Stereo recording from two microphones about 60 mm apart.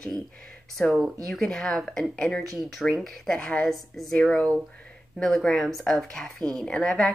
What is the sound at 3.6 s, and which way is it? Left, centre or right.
Speech, centre.